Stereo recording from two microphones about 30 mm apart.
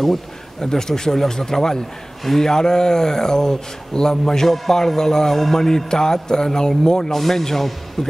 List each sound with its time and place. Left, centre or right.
0.6 s a man's voice: left